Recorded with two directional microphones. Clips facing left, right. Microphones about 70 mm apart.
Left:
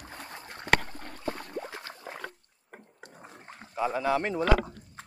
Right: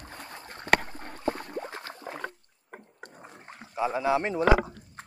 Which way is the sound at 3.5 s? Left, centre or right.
Centre.